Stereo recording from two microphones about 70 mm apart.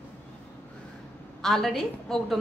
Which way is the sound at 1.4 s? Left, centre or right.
Centre.